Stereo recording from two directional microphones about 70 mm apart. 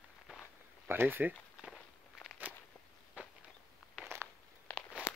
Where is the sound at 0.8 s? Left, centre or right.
Right.